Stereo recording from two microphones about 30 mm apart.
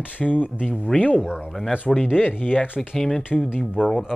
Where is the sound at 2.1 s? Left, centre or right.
Right.